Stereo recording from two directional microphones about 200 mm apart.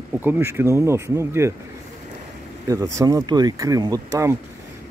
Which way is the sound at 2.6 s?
15° right (ahead or behind).